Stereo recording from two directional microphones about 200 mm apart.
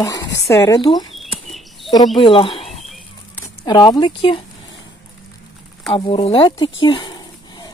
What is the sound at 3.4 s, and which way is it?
Speech, 20° left (ahead or behind).